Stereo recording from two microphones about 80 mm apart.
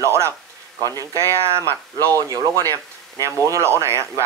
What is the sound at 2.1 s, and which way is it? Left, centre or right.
A man's voice, right.